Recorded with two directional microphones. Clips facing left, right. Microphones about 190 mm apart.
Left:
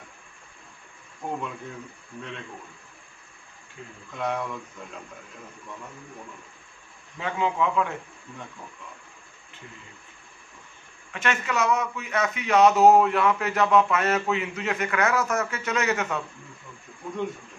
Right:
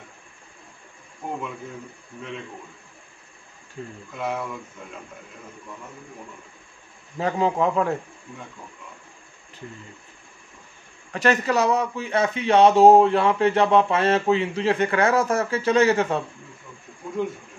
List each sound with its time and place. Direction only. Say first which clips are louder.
1.2 s speech: even; centre (ahead or behind)
3.8 s a man's voice: right 7 dB; 40° right (ahead or behind)
4.1 s speech: even; 5° right (ahead or behind)
7.2 s a man's voice: right 4 dB; 40° right (ahead or behind)
11.1 s a man's voice: right 7 dB; 35° right (ahead or behind)